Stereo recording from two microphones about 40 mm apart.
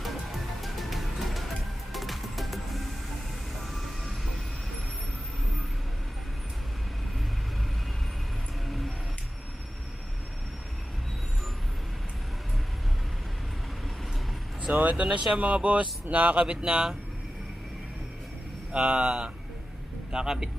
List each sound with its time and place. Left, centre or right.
0.0 s music: centre
8.6 s vehicle: centre
14.7 s speech: right
16.4 s speech: right
18.7 s a man's voice: right